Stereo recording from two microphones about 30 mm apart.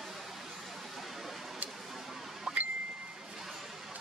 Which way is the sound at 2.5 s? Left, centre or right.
Centre.